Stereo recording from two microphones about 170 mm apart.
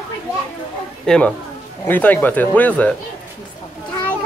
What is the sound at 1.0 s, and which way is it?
Speech, 5° left (ahead or behind).